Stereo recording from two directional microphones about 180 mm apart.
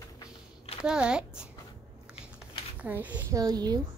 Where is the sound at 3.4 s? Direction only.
20° right (ahead or behind).